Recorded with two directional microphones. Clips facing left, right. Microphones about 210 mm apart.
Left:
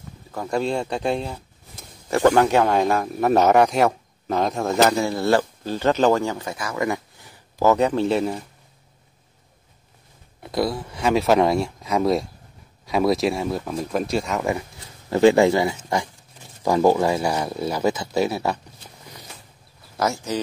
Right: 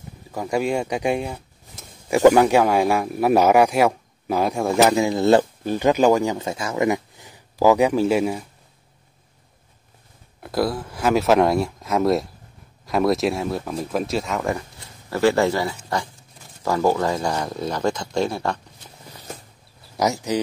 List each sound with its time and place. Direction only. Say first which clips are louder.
0.3 s speech: right 1 dB; 10° right (ahead or behind)
4.9 s speech: right 3 dB; 20° right (ahead or behind)
10.4 s speech: right 1 dB; centre (ahead or behind)
15.0 s speech: left 4 dB; 20° left (ahead or behind)
20.0 s speech: right 2 dB; 15° right (ahead or behind)